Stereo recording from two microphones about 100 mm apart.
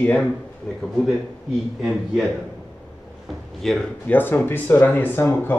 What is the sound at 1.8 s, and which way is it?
Speech, 5° right (ahead or behind).